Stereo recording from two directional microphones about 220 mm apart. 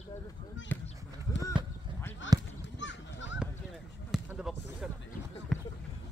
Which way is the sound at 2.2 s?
55° left (ahead or behind).